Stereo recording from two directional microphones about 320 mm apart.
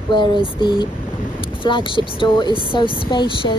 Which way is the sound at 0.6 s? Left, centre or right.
Centre.